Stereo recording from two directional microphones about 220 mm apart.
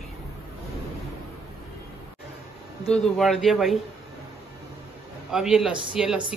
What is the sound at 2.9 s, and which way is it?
Speech, centre (ahead or behind).